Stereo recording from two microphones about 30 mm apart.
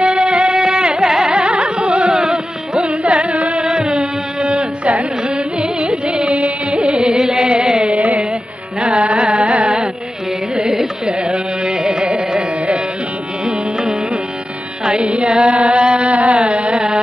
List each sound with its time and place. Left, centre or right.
0.0 s music of bollywood: right
0.6 s carnatic music: right
1.3 s carnatic music: right
3.6 s a sound: right
5.3 s music: right
7.2 s carnatic music: right
7.9 s carnatic music: right
8.9 s carnatic music: right
11.3 s carnatic music: right
15.0 s music: right
15.5 s a sound: right